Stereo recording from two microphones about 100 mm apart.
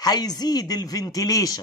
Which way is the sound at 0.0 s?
40° left (ahead or behind).